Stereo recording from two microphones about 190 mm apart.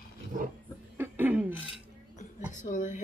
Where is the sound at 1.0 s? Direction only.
10° right (ahead or behind).